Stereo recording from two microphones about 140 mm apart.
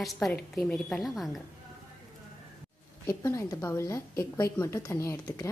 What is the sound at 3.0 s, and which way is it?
Speech, 20° left (ahead or behind).